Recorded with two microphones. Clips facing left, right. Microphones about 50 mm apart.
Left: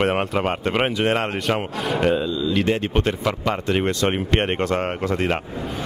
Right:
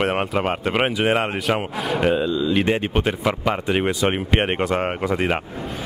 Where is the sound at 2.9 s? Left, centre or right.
Centre.